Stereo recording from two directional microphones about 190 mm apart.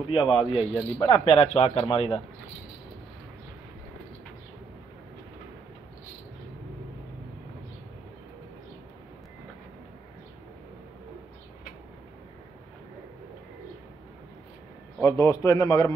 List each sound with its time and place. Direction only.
0.1 s speech: 30° left (ahead or behind)
15.0 s a man's voice: 15° left (ahead or behind)